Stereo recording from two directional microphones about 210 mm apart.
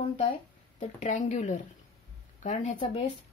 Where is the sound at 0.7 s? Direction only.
35° left (ahead or behind).